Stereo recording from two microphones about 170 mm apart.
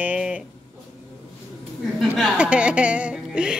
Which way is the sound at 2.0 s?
5° right (ahead or behind).